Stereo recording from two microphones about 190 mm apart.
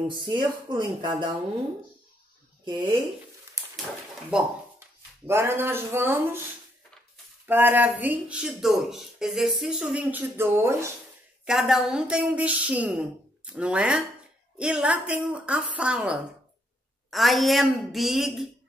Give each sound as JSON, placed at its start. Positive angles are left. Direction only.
{"t": 0.2, "sound": "speech", "side_deg": -25}
{"t": 4.3, "sound": "speech", "side_deg": -10}
{"t": 7.4, "sound": "speech", "side_deg": -10}
{"t": 11.4, "sound": "a woman's voice", "side_deg": 0}